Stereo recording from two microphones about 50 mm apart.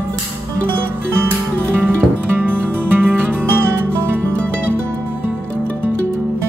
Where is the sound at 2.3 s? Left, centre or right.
Right.